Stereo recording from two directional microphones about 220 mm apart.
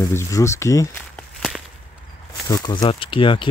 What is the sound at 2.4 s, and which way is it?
Speech, 15° left (ahead or behind).